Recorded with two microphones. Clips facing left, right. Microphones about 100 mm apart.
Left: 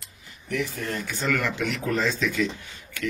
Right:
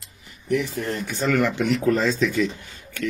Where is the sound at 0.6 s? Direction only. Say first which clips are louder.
Left 2 dB; 30° right (ahead or behind).